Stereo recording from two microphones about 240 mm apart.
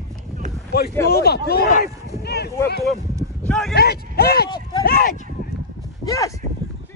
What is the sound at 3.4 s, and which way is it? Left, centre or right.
Speech, centre.